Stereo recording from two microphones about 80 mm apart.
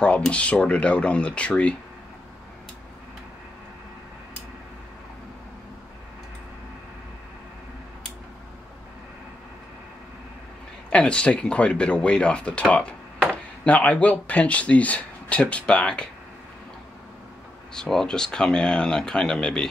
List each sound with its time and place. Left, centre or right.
0.0 s speech: centre
10.9 s speech: centre
17.7 s speech: centre